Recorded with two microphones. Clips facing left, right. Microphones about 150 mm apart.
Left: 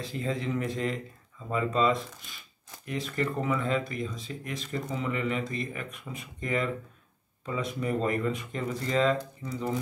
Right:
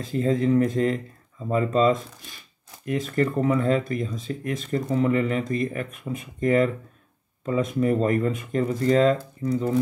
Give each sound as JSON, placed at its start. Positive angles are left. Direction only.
{"t": 0.0, "sound": "speech", "side_deg": -45}